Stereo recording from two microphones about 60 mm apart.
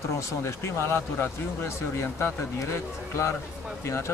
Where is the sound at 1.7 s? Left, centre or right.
Left.